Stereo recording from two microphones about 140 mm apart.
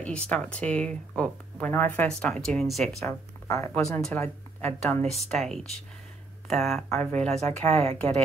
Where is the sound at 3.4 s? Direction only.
20° left (ahead or behind).